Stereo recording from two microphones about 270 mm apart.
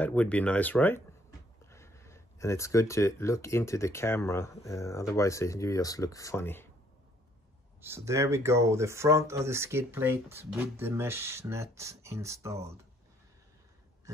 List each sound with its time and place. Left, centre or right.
0.0 s speech: centre
7.8 s speech: centre